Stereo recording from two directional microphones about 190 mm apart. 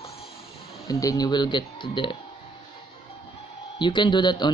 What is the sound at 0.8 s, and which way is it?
Speech, 20° left (ahead or behind).